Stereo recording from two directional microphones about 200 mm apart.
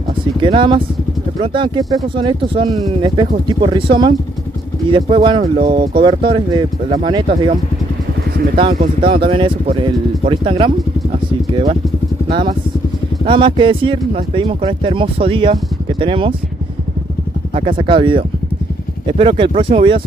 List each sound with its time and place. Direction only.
0.4 s speech: 25° right (ahead or behind)
9.0 s speech: 25° right (ahead or behind)
13.2 s speech: 25° right (ahead or behind)
17.6 s speech: 25° right (ahead or behind)